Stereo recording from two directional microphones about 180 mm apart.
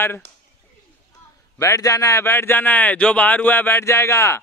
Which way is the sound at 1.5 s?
15° left (ahead or behind).